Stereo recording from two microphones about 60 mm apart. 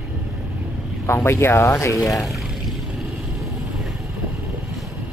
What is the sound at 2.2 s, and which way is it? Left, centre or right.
Vehicle, centre.